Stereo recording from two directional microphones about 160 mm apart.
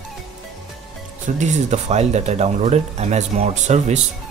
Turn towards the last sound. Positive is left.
turn(degrees=-45)  # may be behind; listen again after turning